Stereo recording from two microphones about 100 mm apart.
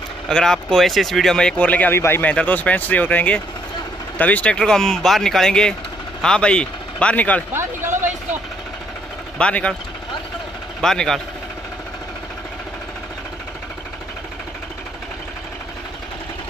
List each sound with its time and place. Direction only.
0.3 s speech: 5° left (ahead or behind); by 2.3 s 25° left (ahead or behind)
2.3 s speech: 15° left (ahead or behind)
7.5 s vehicle: 25° right (ahead or behind)
9.4 s speech: 10° left (ahead or behind)
10.8 s speech: 5° left (ahead or behind)